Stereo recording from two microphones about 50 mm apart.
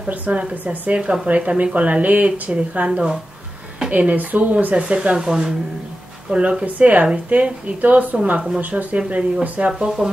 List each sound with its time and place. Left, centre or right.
0.1 s speech: right; by 5.5 s centre
6.3 s speech: right
9.7 s speech: centre